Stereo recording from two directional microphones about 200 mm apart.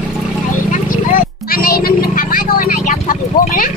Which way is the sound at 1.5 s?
50° left (ahead or behind).